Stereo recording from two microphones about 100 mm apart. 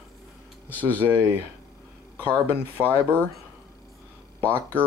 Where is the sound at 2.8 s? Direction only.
20° right (ahead or behind).